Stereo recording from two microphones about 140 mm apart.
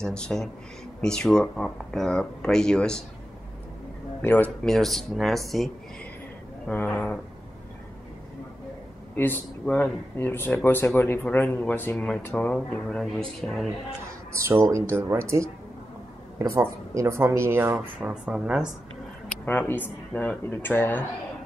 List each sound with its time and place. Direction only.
0.0 s speech: 5° left (ahead or behind)
4.2 s speech: 10° left (ahead or behind)
4.6 s speech: centre (ahead or behind)
6.7 s speech: 10° left (ahead or behind)
9.1 s speech: 15° left (ahead or behind)
14.3 s speech: 20° right (ahead or behind)
17.7 s speech: 5° right (ahead or behind)
19.4 s speech: 15° left (ahead or behind)